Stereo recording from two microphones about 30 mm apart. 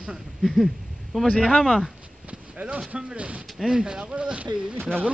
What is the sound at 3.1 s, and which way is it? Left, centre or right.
Speech, right.